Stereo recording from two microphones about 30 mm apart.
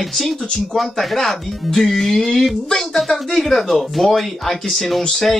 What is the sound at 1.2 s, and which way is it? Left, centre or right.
Speech, centre.